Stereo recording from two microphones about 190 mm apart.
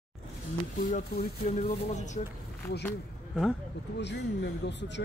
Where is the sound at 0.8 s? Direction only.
40° left (ahead or behind).